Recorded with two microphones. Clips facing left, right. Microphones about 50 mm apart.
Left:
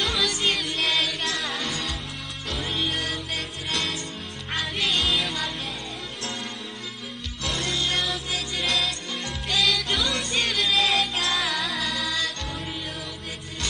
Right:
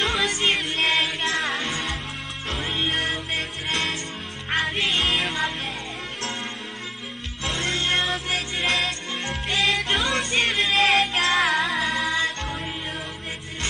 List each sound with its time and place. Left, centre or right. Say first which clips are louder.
0.0 s music: right 2 dB; right
7.4 s music: right 2 dB; right